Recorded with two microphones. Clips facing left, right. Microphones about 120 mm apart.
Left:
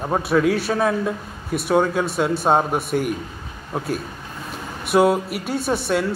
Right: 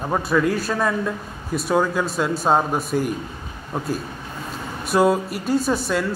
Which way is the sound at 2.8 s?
65° left (ahead or behind).